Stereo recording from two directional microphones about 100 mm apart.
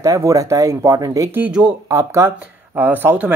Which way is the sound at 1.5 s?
10° right (ahead or behind).